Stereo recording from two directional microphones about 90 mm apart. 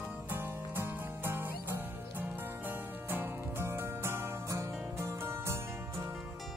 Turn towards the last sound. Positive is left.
turn(degrees=-30)  # may be behind; listen again after turning